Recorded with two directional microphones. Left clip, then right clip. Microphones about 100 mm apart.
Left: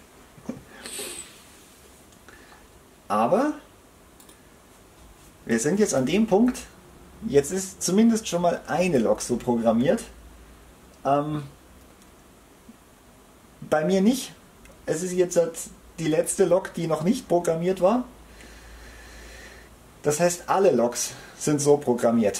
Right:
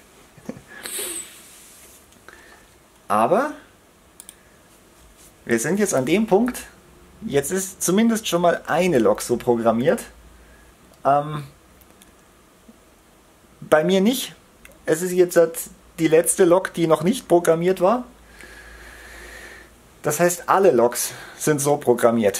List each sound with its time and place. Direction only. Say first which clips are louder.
3.1 s speech: right 4 dB; 40° right (ahead or behind)
5.5 s speech: right 2 dB; 40° right (ahead or behind)
11.1 s speech: right 4 dB; 30° right (ahead or behind)
13.7 s speech: right 5 dB; 45° right (ahead or behind)
20.0 s speech: right 3 dB; 40° right (ahead or behind)